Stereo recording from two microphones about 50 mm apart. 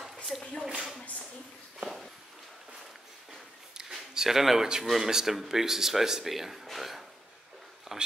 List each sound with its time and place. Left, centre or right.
0.4 s speech: centre
1.8 s walk: centre
3.7 s a sound: centre
4.8 s speech: centre
7.9 s speech: centre